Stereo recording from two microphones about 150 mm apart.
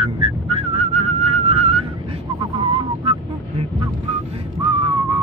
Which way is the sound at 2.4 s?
35° right (ahead or behind).